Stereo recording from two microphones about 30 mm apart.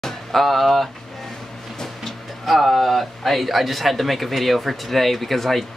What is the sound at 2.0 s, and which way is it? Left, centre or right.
Speech, centre.